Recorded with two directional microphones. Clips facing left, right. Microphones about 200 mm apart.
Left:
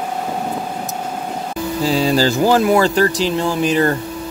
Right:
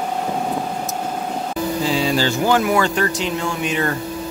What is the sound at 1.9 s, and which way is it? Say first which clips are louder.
Speech: left 6 dB; 40° left (ahead or behind).